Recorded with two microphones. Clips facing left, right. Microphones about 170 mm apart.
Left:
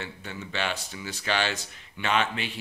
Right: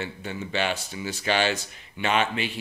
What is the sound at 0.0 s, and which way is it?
Speech, 15° right (ahead or behind).